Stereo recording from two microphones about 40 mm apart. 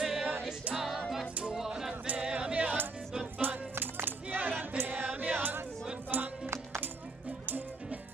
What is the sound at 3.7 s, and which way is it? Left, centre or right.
Music, right.